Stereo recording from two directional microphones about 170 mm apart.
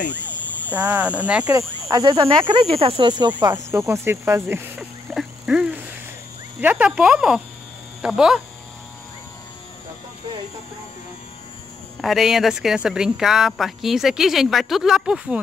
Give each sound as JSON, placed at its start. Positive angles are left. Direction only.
{"t": 0.7, "sound": "speech", "side_deg": -10}
{"t": 1.4, "sound": "speech", "side_deg": -20}
{"t": 5.1, "sound": "a sound", "side_deg": -5}
{"t": 6.6, "sound": "speech", "side_deg": -10}
{"t": 12.0, "sound": "speech", "side_deg": 0}